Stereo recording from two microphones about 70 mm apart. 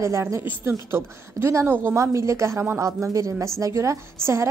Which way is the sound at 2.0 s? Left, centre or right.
Right.